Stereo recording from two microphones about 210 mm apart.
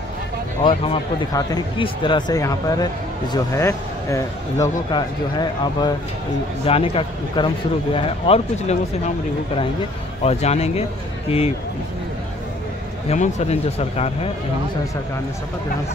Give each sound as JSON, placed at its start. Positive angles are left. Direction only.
{"t": 0.7, "sound": "speech", "side_deg": 20}
{"t": 10.2, "sound": "speech", "side_deg": 30}
{"t": 13.1, "sound": "speech", "side_deg": 30}